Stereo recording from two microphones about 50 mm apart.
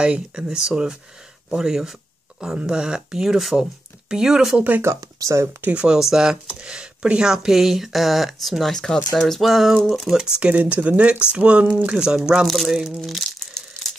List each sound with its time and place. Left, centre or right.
0.0 s speech: centre
4.8 s speech: right
5.7 s speech: right
5.9 s speech: centre
10.1 s speech: centre
11.9 s speech: centre
13.1 s crumpling: centre